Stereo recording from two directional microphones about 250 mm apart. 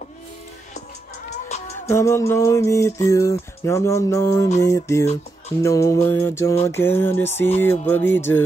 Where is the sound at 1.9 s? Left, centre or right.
Centre.